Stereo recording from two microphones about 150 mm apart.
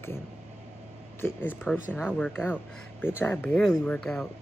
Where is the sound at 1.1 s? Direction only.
15° left (ahead or behind).